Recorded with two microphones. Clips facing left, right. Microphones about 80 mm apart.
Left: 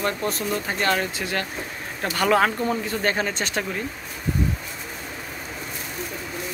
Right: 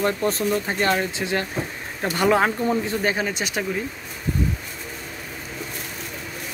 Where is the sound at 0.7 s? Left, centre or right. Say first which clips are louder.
Right 1 dB; right.